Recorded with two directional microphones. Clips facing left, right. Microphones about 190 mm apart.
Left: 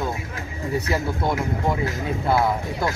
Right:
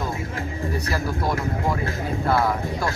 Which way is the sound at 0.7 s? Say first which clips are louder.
Left 5 dB; 25° left (ahead or behind).